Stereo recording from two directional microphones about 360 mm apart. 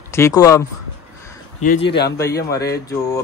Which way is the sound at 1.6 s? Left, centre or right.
Left.